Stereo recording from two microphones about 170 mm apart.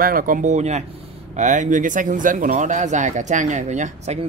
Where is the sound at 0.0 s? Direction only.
55° right (ahead or behind).